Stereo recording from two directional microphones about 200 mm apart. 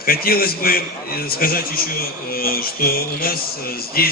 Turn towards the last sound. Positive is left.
turn(degrees=50)  # may be behind; listen again after turning